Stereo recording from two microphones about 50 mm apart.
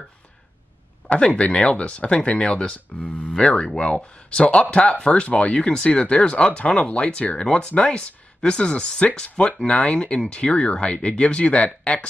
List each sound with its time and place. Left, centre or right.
1.1 s speech: left
3.0 s speech: left
3.3 s speech: centre